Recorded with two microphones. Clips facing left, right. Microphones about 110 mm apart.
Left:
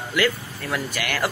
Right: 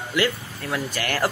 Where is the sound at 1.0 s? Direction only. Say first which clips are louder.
Right 3 dB; 35° right (ahead or behind).